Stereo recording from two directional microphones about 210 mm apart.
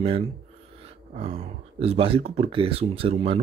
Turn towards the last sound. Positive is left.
turn(degrees=-30)  # may be behind; listen again after turning